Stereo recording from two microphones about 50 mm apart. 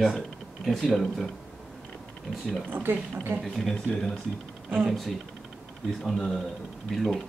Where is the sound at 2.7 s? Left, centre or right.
Right.